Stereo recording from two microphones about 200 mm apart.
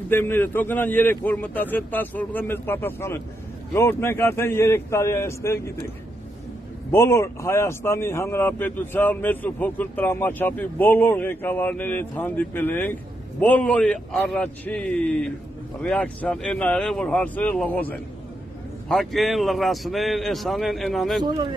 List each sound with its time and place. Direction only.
0.1 s a man's voice: 10° left (ahead or behind)
6.9 s a man's voice: 15° left (ahead or behind)
21.2 s speech: 20° right (ahead or behind)